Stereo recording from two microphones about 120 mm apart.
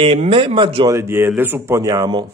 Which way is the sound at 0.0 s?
50° right (ahead or behind).